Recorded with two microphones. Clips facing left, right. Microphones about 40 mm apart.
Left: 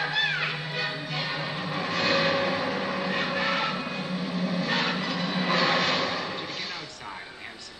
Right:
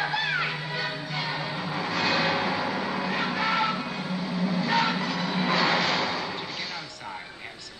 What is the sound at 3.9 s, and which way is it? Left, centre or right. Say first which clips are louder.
Music: even; centre.